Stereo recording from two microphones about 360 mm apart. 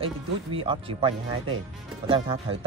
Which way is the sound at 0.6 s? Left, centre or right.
Centre.